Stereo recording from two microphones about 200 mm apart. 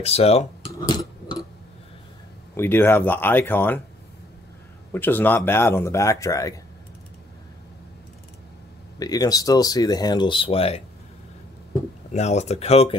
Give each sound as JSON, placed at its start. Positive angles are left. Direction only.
{"t": 0.0, "sound": "speech", "side_deg": 30}
{"t": 0.8, "sound": "tick-tock", "side_deg": 20}
{"t": 2.5, "sound": "speech", "side_deg": 10}
{"t": 4.9, "sound": "speech", "side_deg": 10}
{"t": 9.0, "sound": "speech", "side_deg": 20}
{"t": 12.1, "sound": "speech", "side_deg": 35}